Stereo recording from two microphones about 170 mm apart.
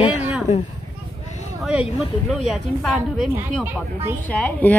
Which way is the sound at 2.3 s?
Centre (ahead or behind).